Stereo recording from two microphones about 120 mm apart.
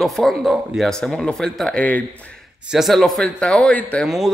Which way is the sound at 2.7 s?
Centre (ahead or behind).